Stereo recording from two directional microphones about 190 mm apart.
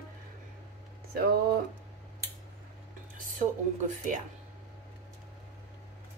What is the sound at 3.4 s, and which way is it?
Speech, 40° right (ahead or behind).